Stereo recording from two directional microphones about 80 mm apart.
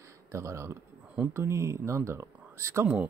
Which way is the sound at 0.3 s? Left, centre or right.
Right.